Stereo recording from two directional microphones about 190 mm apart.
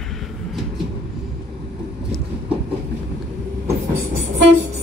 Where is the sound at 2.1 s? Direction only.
Centre (ahead or behind).